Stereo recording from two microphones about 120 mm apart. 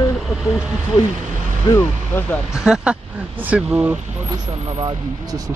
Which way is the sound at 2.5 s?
5° right (ahead or behind).